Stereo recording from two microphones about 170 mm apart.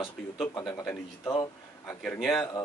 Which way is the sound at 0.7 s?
15° left (ahead or behind).